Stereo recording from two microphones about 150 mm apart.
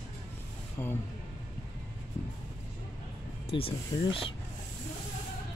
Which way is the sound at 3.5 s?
40° left (ahead or behind).